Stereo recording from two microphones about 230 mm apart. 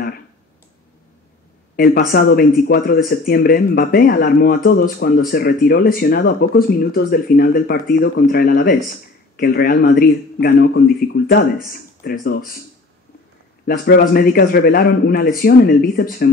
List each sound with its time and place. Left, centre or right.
1.8 s a man's voice: left
13.7 s speech: left